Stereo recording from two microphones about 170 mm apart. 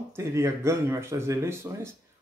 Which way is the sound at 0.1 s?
15° right (ahead or behind).